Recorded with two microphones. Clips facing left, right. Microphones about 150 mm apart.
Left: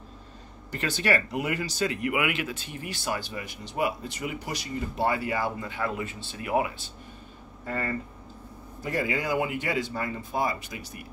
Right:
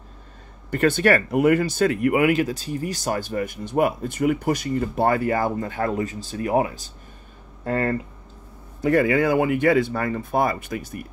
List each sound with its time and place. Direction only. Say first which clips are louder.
0.7 s speech: right 9 dB; 55° right (ahead or behind)
7.6 s speech: right 8 dB; 60° right (ahead or behind)